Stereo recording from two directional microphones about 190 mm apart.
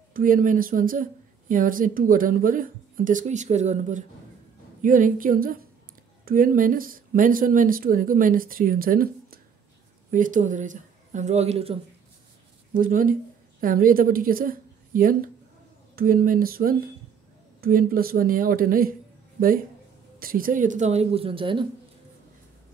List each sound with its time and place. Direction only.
0.1 s speech: 45° right (ahead or behind)
12.7 s a woman's voice: 45° right (ahead or behind)
20.2 s speech: 50° right (ahead or behind); by 21.6 s 25° right (ahead or behind)